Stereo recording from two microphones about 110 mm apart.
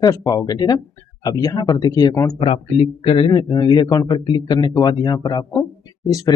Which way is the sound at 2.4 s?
65° left (ahead or behind).